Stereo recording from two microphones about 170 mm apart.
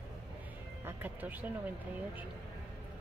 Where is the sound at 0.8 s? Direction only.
10° right (ahead or behind).